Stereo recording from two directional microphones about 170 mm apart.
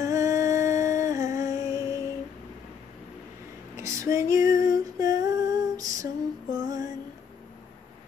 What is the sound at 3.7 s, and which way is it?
Female singing, 15° right (ahead or behind).